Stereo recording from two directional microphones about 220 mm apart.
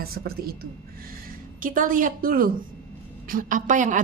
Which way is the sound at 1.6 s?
40° right (ahead or behind).